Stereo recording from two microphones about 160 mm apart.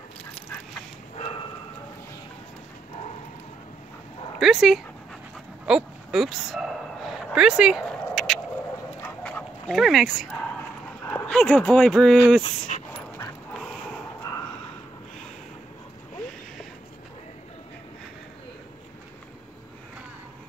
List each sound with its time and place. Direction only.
1.1 s bow-wow: 40° left (ahead or behind)
4.4 s speech: centre (ahead or behind)
5.7 s a sound: 5° right (ahead or behind)
7.3 s dog: 5° right (ahead or behind)
9.0 s duck: 10° left (ahead or behind)
11.1 s speech: 10° left (ahead or behind)
12.7 s dog: 45° left (ahead or behind)